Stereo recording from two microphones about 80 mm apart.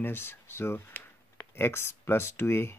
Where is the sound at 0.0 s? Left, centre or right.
Left.